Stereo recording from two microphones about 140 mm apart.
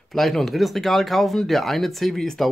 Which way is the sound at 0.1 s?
Centre (ahead or behind).